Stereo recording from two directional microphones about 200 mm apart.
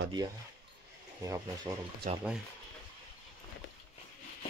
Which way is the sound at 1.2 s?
15° right (ahead or behind).